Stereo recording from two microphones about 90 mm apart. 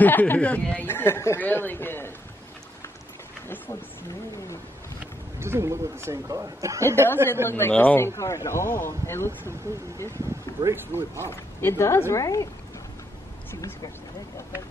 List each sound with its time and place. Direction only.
0.0 s speech: 20° left (ahead or behind)
3.4 s speech: 20° left (ahead or behind)
5.4 s a man's voice: 30° right (ahead or behind)
7.4 s speech: 25° left (ahead or behind)
8.2 s speech: 35° left (ahead or behind)
10.1 s a man's voice: 35° right (ahead or behind)
11.2 s speech: 30° left (ahead or behind)